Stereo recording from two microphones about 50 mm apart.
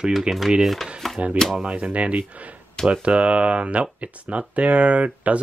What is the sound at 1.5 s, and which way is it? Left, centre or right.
Speech, right.